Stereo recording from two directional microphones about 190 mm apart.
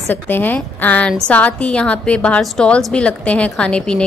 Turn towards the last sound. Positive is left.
turn(degrees=5)  # may be behind; listen again after turning